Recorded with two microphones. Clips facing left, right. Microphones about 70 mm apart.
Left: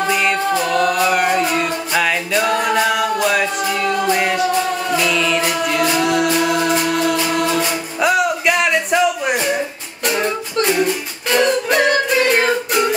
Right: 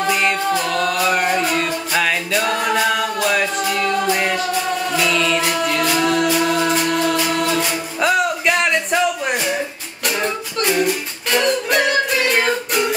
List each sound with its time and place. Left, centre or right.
0.0 s music: centre